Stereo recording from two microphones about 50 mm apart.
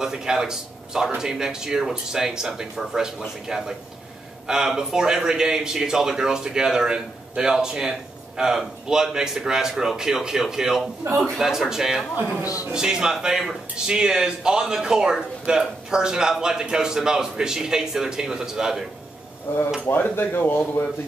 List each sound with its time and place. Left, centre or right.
0.0 s speech: centre
12.2 s a man's voice: right
12.7 s speech: centre
19.5 s speech: left